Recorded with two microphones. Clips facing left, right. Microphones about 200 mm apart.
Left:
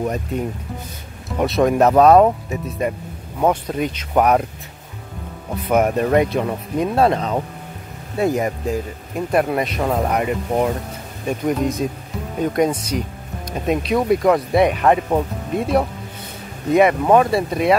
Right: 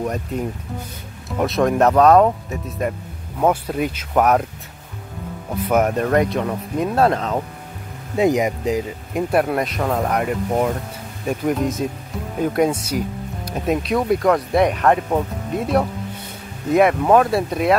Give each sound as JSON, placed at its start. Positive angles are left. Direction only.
{"t": 1.4, "sound": "speech", "side_deg": 0}
{"t": 5.5, "sound": "speech", "side_deg": 0}
{"t": 8.2, "sound": "speech", "side_deg": -15}
{"t": 9.3, "sound": "speech", "side_deg": 0}